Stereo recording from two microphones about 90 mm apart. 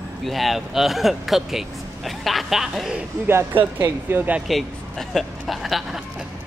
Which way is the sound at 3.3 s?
25° right (ahead or behind).